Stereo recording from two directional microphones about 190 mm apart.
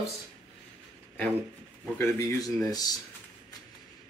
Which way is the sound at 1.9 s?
15° left (ahead or behind).